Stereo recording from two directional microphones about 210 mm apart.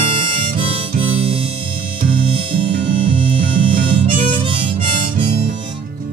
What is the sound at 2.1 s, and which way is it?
Music, 25° right (ahead or behind).